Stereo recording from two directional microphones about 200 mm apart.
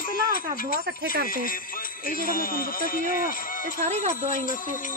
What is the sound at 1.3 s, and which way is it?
A man's voice, 45° left (ahead or behind).